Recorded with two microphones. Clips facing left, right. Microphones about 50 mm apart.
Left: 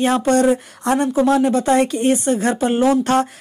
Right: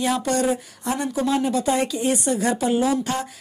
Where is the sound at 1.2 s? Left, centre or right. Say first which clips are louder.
Left 5 dB; left.